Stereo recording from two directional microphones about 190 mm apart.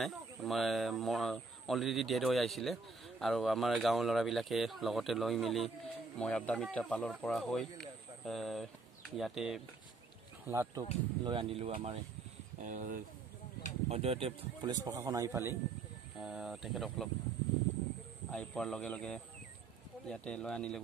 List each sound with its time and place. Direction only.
0.0 s speech: centre (ahead or behind)
10.4 s speech: 15° right (ahead or behind)
11.2 s speech: 30° right (ahead or behind)
12.6 s speech: 45° right (ahead or behind)
13.8 s a man's voice: 35° right (ahead or behind); by 15.5 s 15° right (ahead or behind)
16.2 s speech: 5° right (ahead or behind)
18.3 s speech: 5° left (ahead or behind)